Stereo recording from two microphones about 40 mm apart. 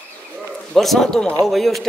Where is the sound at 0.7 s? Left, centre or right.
Centre.